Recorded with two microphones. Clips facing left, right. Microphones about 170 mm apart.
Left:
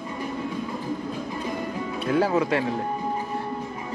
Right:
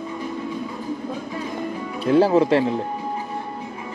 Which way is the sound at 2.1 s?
30° right (ahead or behind).